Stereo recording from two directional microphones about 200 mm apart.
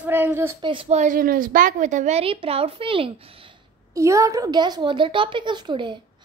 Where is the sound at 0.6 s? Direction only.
25° right (ahead or behind).